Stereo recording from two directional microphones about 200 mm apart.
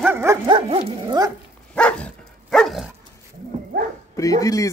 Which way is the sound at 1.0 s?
15° right (ahead or behind).